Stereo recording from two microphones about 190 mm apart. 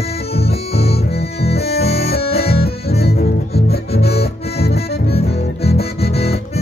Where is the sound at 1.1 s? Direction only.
55° left (ahead or behind).